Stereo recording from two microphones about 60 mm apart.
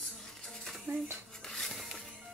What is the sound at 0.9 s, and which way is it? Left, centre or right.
Speech, right.